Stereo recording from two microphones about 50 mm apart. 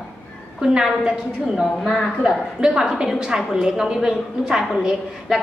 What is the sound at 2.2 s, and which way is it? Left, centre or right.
A woman's voice, centre.